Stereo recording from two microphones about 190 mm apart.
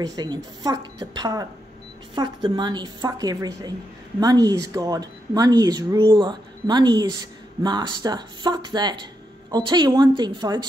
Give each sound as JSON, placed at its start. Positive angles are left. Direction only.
{"t": 0.0, "sound": "speech", "side_deg": -20}